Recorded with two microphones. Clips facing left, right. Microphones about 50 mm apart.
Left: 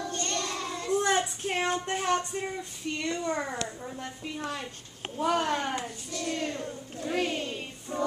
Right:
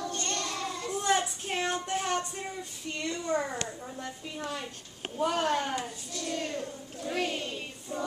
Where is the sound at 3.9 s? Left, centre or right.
Left.